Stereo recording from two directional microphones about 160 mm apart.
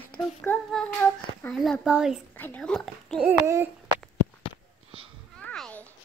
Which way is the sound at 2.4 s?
10° left (ahead or behind).